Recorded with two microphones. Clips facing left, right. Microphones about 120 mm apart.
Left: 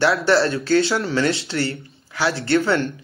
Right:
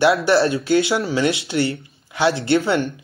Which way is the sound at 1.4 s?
20° right (ahead or behind).